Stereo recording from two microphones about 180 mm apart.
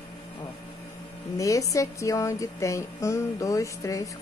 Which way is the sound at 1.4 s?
20° left (ahead or behind).